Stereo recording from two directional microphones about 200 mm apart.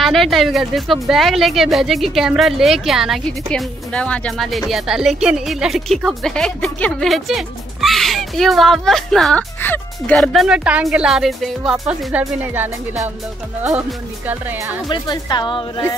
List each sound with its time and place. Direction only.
0.0 s a woman's voice: centre (ahead or behind)
14.9 s a woman's voice: 20° left (ahead or behind)